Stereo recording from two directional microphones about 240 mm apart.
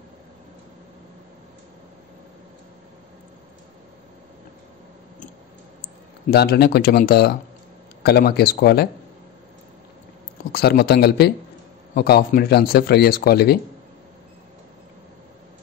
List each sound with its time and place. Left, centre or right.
6.3 s speech: left
10.5 s speech: left